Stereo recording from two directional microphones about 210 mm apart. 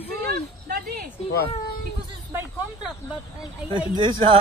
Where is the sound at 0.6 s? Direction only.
50° right (ahead or behind).